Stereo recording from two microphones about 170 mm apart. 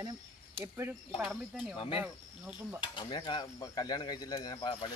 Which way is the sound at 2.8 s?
30° left (ahead or behind).